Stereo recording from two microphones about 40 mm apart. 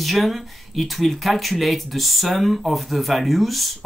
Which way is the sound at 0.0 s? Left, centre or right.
Centre.